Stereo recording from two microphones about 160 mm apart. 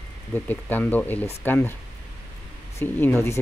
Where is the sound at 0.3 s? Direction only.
10° left (ahead or behind).